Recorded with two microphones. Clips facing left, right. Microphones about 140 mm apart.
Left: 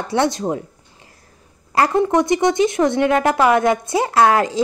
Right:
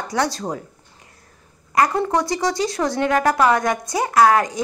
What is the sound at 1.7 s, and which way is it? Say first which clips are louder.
A woman's voice: left 3 dB; 30° left (ahead or behind).